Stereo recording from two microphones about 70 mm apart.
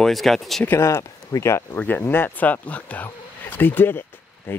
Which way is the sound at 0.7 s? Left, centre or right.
Left.